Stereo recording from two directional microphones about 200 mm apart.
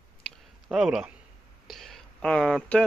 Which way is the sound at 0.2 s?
5° right (ahead or behind).